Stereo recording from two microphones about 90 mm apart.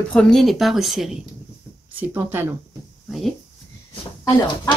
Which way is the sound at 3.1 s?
Centre (ahead or behind).